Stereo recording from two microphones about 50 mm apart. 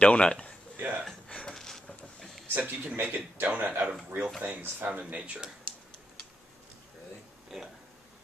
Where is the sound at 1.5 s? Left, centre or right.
Centre.